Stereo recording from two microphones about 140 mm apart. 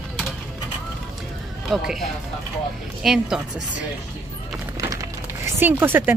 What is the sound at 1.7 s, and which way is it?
Speech, centre (ahead or behind).